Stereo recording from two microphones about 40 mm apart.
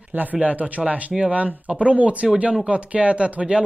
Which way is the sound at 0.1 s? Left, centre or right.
Right.